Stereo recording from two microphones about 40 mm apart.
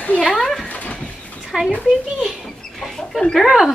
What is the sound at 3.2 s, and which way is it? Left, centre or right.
Speech, centre.